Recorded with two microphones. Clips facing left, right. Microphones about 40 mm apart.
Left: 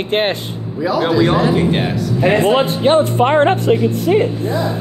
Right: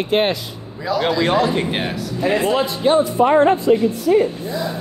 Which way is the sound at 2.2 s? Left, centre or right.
Left.